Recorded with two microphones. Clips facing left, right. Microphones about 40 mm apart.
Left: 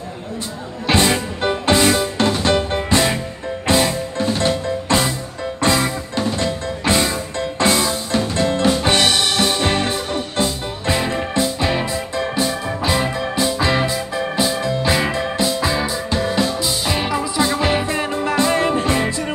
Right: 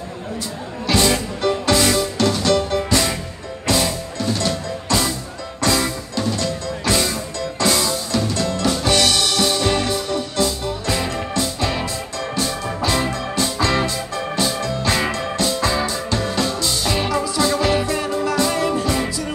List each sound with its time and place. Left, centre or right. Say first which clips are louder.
0.8 s music: left 1 dB; left